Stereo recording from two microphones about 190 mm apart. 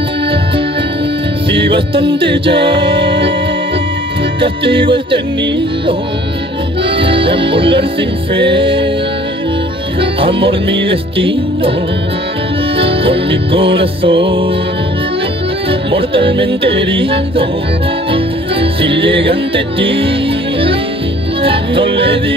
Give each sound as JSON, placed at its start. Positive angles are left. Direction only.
{"t": 1.5, "sound": "music", "side_deg": -25}
{"t": 4.4, "sound": "music", "side_deg": -25}
{"t": 7.0, "sound": "music", "side_deg": -25}
{"t": 10.2, "sound": "music", "side_deg": -25}
{"t": 12.7, "sound": "music", "side_deg": -30}
{"t": 15.9, "sound": "music", "side_deg": -30}
{"t": 21.4, "sound": "music", "side_deg": -30}